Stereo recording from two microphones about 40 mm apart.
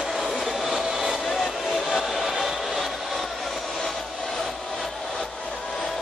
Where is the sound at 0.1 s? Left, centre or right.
Centre.